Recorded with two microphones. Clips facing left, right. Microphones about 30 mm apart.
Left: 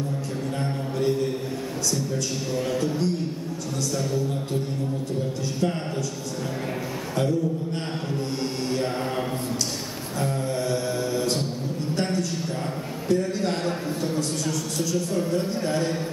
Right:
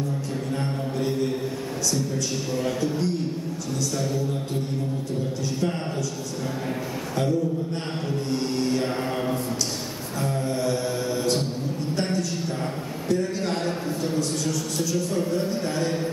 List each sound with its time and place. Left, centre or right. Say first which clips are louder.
0.6 s mantra: left 2 dB; centre
2.5 s a man's voice: left 1 dB; centre
10.2 s mantra: right 1 dB; centre
11.9 s a sound: left 1 dB; centre